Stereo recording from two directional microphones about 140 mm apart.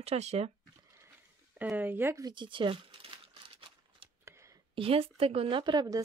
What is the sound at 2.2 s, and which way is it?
Crumpling, 30° right (ahead or behind).